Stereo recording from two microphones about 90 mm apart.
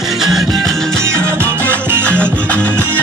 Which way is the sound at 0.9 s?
30° right (ahead or behind).